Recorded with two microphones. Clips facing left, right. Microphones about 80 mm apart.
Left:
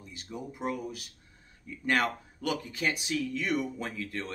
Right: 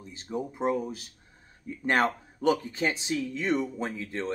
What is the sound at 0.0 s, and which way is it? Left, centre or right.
Speech, right.